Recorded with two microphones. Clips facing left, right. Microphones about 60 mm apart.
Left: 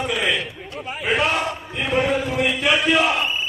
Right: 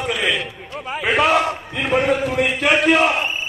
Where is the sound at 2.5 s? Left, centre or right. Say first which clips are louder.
Right 3 dB; right.